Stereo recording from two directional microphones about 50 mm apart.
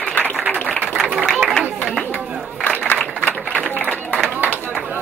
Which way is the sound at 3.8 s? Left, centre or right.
Left.